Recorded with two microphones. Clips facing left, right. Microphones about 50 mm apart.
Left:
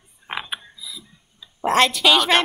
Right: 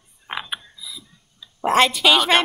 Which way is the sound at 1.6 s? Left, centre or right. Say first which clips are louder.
Right 1 dB; centre.